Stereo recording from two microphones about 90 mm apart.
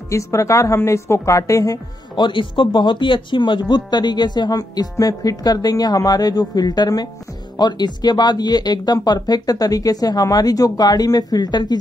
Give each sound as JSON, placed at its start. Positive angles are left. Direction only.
{"t": 0.1, "sound": "a woman's voice", "side_deg": 35}
{"t": 2.1, "sound": "speech", "side_deg": 60}